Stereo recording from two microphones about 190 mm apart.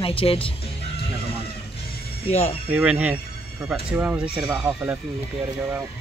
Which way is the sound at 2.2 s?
35° left (ahead or behind).